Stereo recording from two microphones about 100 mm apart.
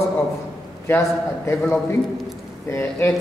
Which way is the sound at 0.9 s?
30° left (ahead or behind).